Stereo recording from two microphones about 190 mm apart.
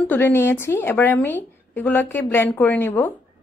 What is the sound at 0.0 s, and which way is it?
Speech, 10° left (ahead or behind).